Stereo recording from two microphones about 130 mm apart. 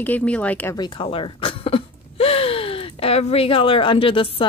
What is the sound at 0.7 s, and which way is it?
Speech, 35° left (ahead or behind).